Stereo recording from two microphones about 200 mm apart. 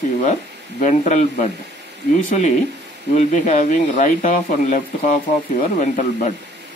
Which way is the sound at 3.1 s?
35° left (ahead or behind).